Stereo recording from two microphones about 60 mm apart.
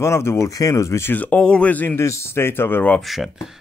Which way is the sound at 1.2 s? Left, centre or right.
Centre.